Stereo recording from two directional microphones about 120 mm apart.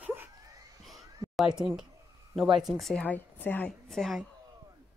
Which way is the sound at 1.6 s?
5° right (ahead or behind).